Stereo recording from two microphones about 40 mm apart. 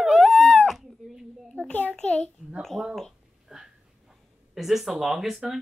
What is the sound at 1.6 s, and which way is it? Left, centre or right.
Speech, left.